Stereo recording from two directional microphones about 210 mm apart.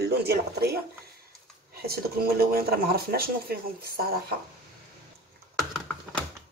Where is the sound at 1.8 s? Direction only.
45° right (ahead or behind).